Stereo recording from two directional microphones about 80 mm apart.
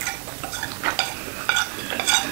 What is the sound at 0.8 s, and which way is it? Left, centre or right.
Stir, right.